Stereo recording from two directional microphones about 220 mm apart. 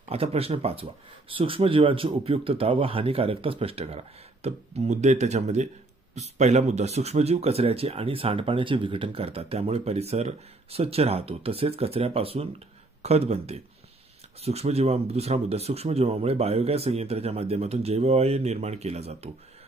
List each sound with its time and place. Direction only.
0.1 s speech: 25° right (ahead or behind)